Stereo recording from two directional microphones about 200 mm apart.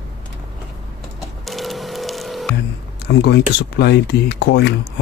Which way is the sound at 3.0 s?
55° left (ahead or behind).